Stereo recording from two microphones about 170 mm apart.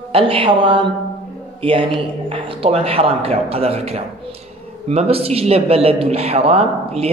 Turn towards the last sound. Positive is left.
turn(degrees=-35)  # may be behind; listen again after turning